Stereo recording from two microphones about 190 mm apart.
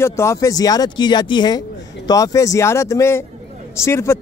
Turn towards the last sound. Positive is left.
turn(degrees=15)  # may be behind; listen again after turning